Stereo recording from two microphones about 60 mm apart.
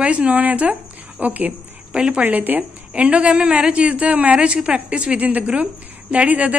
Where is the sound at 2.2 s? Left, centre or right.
Right.